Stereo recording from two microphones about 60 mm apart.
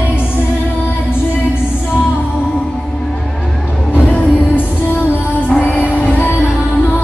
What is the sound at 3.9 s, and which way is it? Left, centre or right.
Music, left.